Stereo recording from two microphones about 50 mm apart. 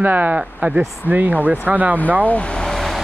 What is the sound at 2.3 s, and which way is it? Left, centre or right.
Speech, left.